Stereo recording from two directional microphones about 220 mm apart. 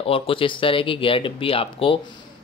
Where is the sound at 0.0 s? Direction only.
25° left (ahead or behind).